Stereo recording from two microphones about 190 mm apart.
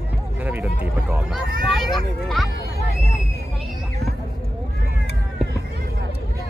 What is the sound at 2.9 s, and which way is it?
Hubbub, 55° right (ahead or behind).